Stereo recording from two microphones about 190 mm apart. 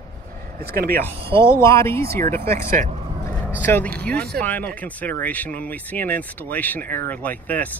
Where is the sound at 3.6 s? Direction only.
10° left (ahead or behind).